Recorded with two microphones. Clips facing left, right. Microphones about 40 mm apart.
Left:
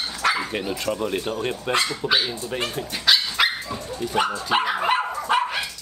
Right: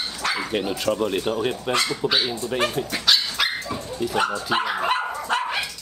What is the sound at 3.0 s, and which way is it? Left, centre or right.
Dog, centre.